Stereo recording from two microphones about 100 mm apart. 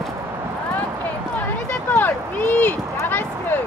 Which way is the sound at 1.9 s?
20° left (ahead or behind).